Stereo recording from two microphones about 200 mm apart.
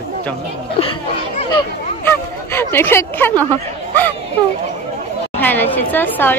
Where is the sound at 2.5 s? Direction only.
10° left (ahead or behind).